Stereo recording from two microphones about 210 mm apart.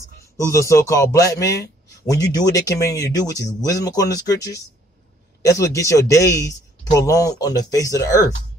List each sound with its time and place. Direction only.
0.4 s speech: 15° left (ahead or behind)